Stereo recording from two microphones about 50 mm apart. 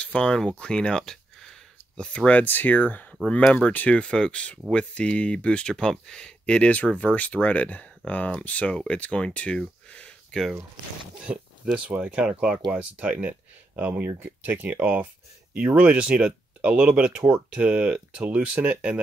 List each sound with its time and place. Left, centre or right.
0.0 s speech: left
2.0 s speech: left
11.2 s speech: centre